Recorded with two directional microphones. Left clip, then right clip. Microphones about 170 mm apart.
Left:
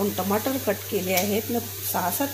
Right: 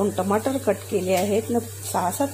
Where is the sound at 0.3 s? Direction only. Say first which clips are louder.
Right 3 dB; 10° right (ahead or behind).